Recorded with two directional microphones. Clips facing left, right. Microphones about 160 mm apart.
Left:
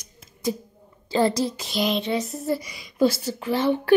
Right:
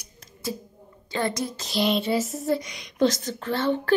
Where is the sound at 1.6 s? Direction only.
Centre (ahead or behind).